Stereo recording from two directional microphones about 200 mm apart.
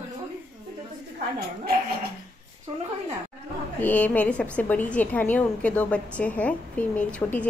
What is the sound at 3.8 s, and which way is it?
A woman's voice, 10° left (ahead or behind).